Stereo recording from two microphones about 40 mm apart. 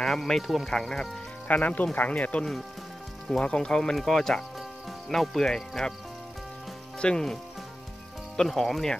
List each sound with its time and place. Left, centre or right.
0.0 s speech: centre
1.5 s speech: left
3.3 s speech: left
7.0 s speech: left
8.4 s speech: centre